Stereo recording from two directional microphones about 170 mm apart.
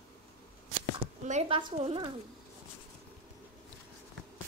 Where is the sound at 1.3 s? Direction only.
35° right (ahead or behind).